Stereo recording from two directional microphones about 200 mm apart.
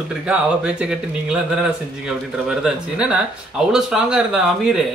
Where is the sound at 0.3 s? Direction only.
5° right (ahead or behind).